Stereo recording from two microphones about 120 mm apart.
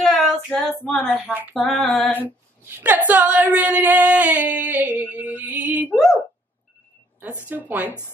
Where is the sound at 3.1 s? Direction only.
10° right (ahead or behind).